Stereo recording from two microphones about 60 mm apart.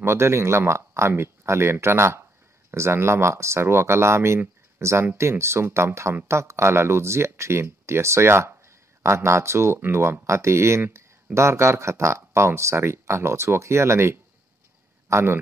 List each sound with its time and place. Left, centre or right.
0.0 s speech: right